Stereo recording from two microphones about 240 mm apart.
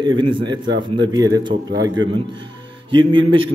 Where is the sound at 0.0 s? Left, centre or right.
Centre.